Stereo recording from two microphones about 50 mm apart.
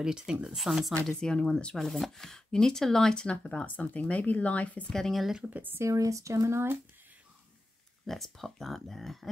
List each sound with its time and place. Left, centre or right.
0.0 s speech: centre
1.2 s speech: centre
3.3 s speech: left
4.8 s speech: centre
5.5 s speech: right
5.8 s speech: right
8.1 s speech: centre